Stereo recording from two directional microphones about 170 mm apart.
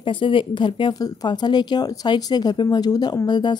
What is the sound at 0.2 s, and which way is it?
Speech, 30° left (ahead or behind).